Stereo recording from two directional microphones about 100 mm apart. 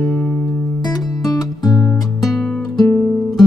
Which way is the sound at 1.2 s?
40° left (ahead or behind).